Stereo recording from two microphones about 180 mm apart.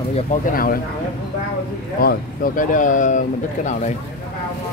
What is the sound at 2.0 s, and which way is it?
Speech, 50° left (ahead or behind).